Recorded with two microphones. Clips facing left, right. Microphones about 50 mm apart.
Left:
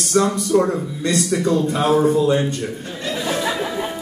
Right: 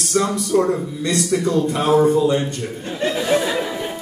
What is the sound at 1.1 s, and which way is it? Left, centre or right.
Speech, left.